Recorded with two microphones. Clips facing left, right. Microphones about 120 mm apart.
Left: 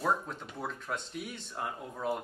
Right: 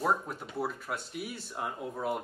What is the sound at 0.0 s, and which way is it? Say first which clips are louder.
Speech: right 1 dB; 10° right (ahead or behind).